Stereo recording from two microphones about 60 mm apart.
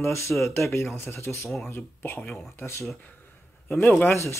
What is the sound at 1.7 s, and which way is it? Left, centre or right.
A man's voice, left.